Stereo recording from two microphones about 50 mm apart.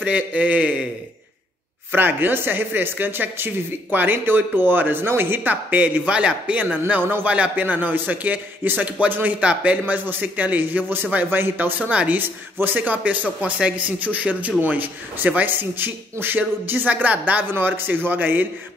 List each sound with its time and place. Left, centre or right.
0.0 s a man's voice: right
1.9 s speech: right
6.9 s a man's voice: right
7.2 s speech: right
9.4 s a man's voice: right
9.9 s a man's voice: right
11.9 s a man's voice: right
12.2 s speech: right
13.4 s speech: right
17.3 s speech: right